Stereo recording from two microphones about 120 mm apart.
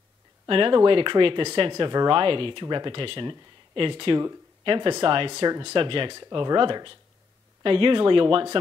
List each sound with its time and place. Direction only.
0.5 s speech: 45° right (ahead or behind)